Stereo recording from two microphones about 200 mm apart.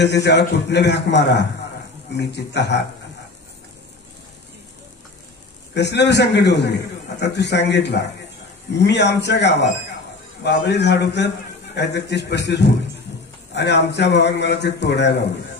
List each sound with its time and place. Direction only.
0.0 s a man's voice: 60° left (ahead or behind)
5.8 s a man's voice: 60° left (ahead or behind)